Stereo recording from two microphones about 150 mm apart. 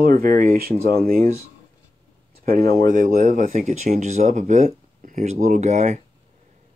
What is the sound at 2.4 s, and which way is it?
Speech, 80° right.